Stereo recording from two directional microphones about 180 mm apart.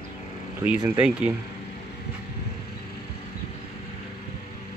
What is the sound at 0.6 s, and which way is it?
Speech, 10° right (ahead or behind).